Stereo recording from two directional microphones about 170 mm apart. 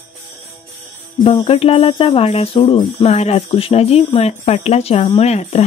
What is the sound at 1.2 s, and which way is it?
Music, 35° left (ahead or behind).